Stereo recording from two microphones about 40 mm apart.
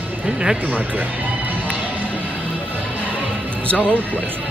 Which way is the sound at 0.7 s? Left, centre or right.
Right.